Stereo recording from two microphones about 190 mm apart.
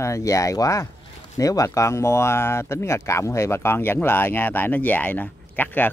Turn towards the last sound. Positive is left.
turn(degrees=10)  # may be behind; listen again after turning